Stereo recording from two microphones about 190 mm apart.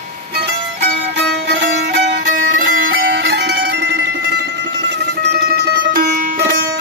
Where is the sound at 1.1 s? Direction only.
65° right (ahead or behind).